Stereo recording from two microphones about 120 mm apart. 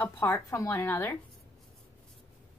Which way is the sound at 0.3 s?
25° left (ahead or behind).